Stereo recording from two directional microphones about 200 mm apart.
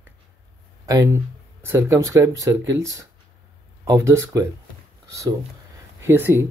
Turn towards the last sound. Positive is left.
turn(degrees=-10)  # may be behind; listen again after turning